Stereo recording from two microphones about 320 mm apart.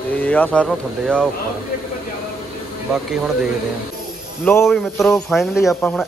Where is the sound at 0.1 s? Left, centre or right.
Centre.